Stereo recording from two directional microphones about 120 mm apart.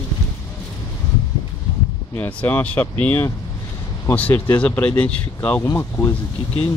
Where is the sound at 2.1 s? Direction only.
15° left (ahead or behind).